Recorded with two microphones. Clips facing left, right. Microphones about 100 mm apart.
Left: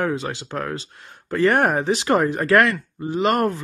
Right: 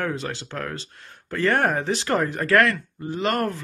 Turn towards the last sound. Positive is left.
turn(degrees=20)  # may be behind; listen again after turning